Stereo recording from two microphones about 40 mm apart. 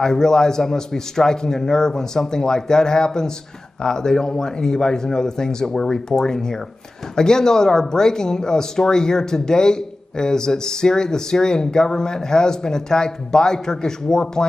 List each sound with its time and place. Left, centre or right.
0.0 s speech: centre